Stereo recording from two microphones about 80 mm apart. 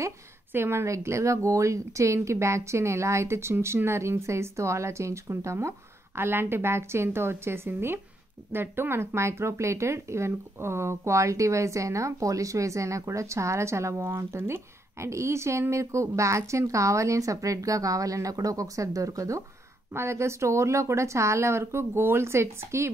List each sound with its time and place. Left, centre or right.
0.5 s speech: right